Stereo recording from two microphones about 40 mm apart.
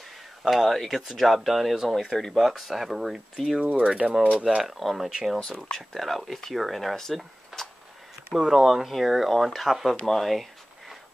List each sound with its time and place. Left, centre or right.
0.4 s speech: centre
4.2 s speech: right
4.6 s speech: centre
5.4 s speech: centre
5.8 s speech: centre
7.5 s a sound: centre
8.4 s speech: centre